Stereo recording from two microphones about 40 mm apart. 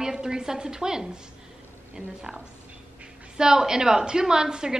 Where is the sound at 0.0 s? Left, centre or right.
Centre.